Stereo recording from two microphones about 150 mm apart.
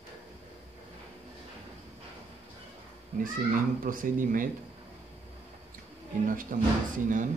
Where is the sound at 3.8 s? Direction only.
65° right (ahead or behind).